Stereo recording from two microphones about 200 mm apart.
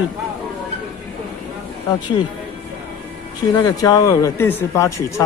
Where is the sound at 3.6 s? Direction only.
15° left (ahead or behind).